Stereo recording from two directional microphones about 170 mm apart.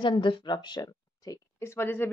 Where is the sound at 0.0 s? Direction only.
30° left (ahead or behind).